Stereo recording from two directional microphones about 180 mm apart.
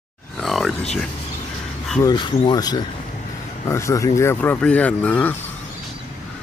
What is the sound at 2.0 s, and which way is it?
Speech, 25° left (ahead or behind).